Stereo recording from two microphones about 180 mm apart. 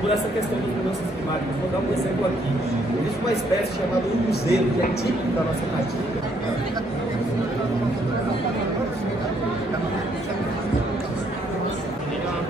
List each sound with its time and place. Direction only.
4.3 s speech: 65° left (ahead or behind)